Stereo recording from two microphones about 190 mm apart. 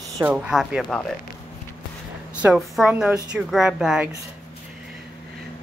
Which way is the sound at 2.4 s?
Centre (ahead or behind).